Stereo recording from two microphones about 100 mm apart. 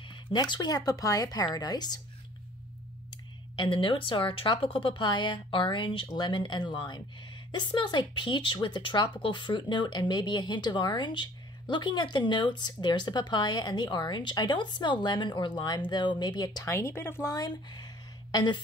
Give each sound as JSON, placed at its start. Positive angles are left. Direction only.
{"t": 0.1, "sound": "speech", "side_deg": 50}
{"t": 3.5, "sound": "a woman's voice", "side_deg": 55}
{"t": 16.6, "sound": "speech", "side_deg": 25}
{"t": 17.3, "sound": "a sound", "side_deg": 45}